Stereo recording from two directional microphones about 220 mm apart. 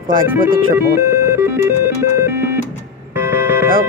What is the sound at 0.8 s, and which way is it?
Music, 10° right (ahead or behind).